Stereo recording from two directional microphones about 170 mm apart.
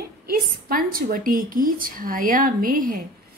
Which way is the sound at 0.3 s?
60° right (ahead or behind).